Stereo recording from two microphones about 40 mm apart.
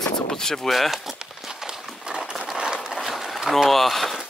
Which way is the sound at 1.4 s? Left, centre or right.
Centre.